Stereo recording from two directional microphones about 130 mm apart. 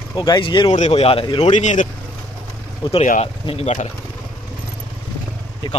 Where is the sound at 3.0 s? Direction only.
60° left (ahead or behind).